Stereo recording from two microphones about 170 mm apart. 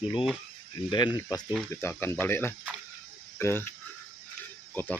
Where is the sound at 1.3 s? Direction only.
20° left (ahead or behind).